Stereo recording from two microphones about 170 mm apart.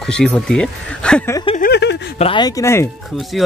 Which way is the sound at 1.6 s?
75° left (ahead or behind).